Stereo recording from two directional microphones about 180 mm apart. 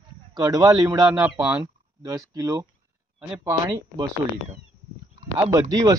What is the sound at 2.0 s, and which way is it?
Speech, 20° right (ahead or behind).